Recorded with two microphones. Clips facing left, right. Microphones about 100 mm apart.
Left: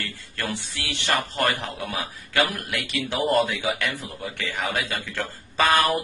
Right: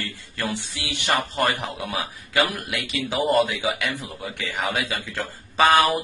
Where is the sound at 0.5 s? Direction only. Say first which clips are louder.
Right 1 dB; 20° right (ahead or behind).